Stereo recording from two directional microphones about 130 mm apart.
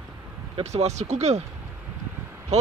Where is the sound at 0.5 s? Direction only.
55° right (ahead or behind).